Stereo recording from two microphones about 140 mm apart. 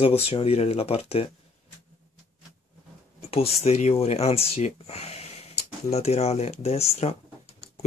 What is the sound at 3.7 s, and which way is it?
Speech, 50° left (ahead or behind).